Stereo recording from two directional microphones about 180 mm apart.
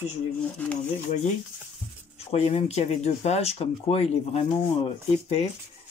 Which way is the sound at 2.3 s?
35° left (ahead or behind).